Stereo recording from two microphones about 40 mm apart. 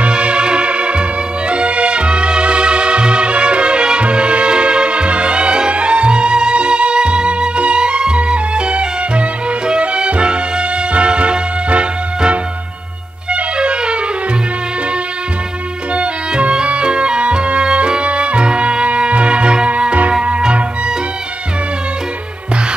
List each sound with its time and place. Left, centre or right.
0.0 s music: right
15.9 s music: right